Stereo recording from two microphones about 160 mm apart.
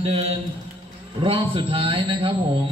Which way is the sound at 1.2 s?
35° right (ahead or behind).